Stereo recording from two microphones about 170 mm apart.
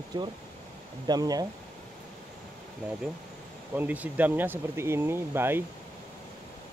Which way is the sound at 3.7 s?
10° right (ahead or behind).